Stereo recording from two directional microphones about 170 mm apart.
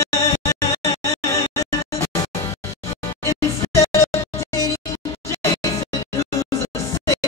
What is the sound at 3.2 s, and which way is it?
Music, 15° left (ahead or behind).